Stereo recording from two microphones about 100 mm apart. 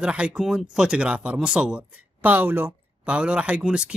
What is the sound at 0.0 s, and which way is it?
A man's voice, 10° right (ahead or behind).